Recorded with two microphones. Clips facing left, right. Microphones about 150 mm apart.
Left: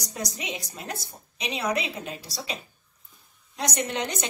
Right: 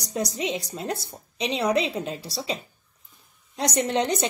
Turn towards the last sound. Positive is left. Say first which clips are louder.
# right 6 dB
turn(degrees=-30)  # may be behind; listen again after turning